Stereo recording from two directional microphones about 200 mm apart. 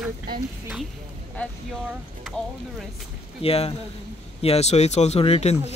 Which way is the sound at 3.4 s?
30° left (ahead or behind).